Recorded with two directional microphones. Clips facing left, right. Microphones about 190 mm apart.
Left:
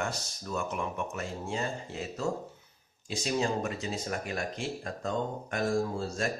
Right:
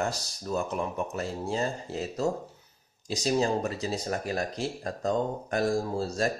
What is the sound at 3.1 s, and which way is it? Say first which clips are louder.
A man's voice: right 4 dB; 35° right (ahead or behind).